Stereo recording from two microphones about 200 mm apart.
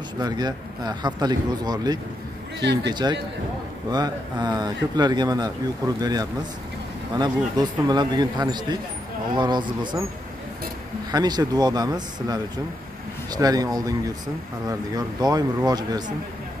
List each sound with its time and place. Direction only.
0.2 s speech: 20° right (ahead or behind)
11.1 s speech: 20° right (ahead or behind)